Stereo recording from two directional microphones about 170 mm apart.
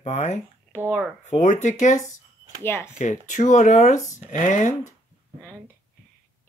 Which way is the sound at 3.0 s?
45° left (ahead or behind).